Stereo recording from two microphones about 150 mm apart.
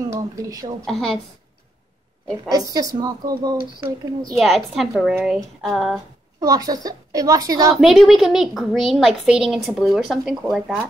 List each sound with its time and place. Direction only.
0.0 s speech: 20° right (ahead or behind)
0.8 s a woman's voice: centre (ahead or behind)
2.5 s a woman's voice: 25° right (ahead or behind)
4.3 s a woman's voice: centre (ahead or behind)
6.4 s a woman's voice: 25° right (ahead or behind)
7.7 s a woman's voice: centre (ahead or behind)